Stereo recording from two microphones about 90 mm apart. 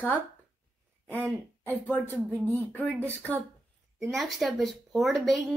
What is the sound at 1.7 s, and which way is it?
A woman's voice, 20° left (ahead or behind).